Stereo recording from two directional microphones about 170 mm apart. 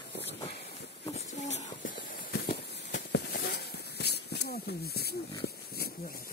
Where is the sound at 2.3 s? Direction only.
70° left (ahead or behind).